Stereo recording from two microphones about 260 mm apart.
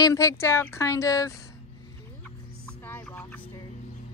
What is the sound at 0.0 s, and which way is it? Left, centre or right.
A woman's voice, centre.